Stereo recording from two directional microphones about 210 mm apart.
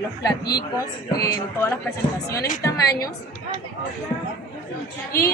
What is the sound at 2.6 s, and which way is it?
Speech, 15° left (ahead or behind).